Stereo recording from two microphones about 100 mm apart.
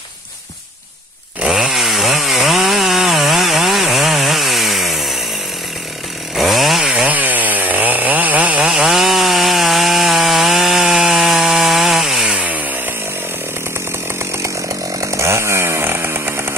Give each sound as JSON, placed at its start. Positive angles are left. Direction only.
{"t": 1.4, "sound": "chainsaw", "side_deg": -5}
{"t": 6.3, "sound": "chainsaw", "side_deg": 0}
{"t": 6.9, "sound": "chainsaw", "side_deg": -15}
{"t": 12.4, "sound": "chainsaw", "side_deg": -15}
{"t": 14.3, "sound": "chainsaw", "side_deg": -30}